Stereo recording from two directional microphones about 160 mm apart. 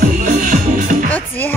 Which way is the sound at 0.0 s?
60° right (ahead or behind).